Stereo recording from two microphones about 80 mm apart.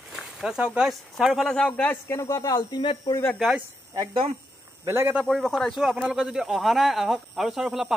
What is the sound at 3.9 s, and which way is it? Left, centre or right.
Speech, right.